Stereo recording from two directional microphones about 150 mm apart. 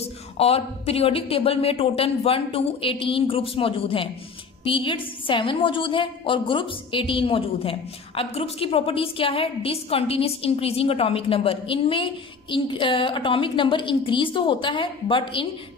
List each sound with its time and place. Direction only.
0.0 s a woman's voice: 40° left (ahead or behind)